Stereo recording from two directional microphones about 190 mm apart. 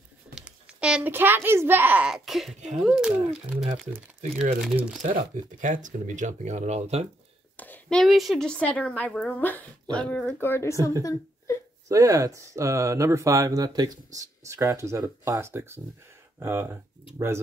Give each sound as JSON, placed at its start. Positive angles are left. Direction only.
{"t": 0.3, "sound": "a child's voice", "side_deg": -5}
{"t": 4.2, "sound": "speech", "side_deg": -35}
{"t": 4.6, "sound": "speech", "side_deg": -5}
{"t": 5.0, "sound": "speech", "side_deg": -45}
{"t": 7.5, "sound": "a woman's voice", "side_deg": 10}
{"t": 11.9, "sound": "speech", "side_deg": -15}